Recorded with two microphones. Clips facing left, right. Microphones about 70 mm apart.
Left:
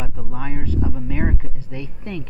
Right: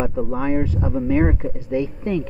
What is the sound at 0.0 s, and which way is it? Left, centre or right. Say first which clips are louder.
Speech: right 9 dB; right.